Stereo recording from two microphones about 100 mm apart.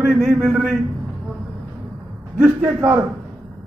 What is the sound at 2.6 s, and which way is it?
Speech, 30° right (ahead or behind).